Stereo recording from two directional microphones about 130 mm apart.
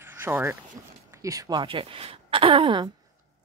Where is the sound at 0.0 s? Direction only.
15° right (ahead or behind).